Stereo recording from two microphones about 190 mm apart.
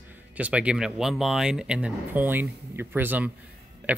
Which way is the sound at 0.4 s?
5° right (ahead or behind).